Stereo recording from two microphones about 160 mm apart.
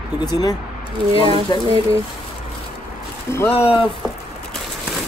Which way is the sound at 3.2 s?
15° left (ahead or behind).